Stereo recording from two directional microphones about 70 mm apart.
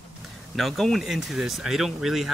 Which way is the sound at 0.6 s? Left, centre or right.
Centre.